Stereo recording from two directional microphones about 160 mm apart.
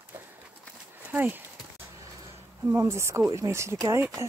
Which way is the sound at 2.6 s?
15° right (ahead or behind).